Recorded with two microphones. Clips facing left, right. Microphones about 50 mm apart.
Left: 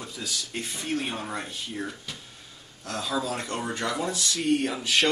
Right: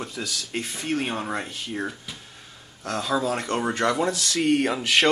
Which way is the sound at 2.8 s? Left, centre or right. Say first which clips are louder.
Right 5 dB; right.